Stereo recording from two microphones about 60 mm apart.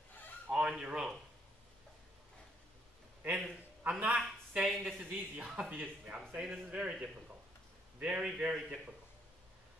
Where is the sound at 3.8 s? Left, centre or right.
Right.